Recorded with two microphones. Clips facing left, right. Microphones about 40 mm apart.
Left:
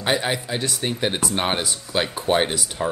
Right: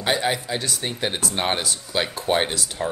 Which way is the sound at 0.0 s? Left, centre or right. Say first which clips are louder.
Even; centre.